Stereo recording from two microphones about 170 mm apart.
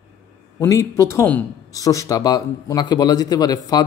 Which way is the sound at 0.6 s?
15° left (ahead or behind).